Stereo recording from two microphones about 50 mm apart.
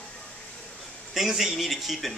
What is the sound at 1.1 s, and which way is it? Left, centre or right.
Speech, centre.